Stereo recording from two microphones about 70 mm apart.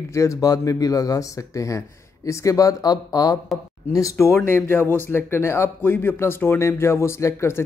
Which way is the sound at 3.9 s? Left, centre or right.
Left.